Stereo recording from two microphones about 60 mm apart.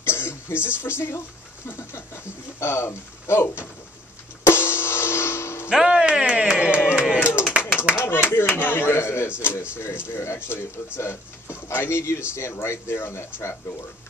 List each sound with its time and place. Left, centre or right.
0.0 s throat clearing: left
0.6 s speech: right
0.8 s speech: left
4.5 s music: left
5.7 s a sound: centre
7.9 s speech: left